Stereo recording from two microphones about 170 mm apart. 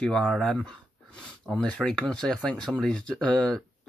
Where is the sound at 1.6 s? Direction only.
5° left (ahead or behind).